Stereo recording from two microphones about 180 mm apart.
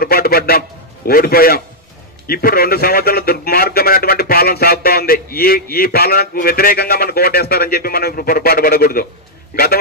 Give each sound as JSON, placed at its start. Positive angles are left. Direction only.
{"t": 0.0, "sound": "a man's voice", "side_deg": 55}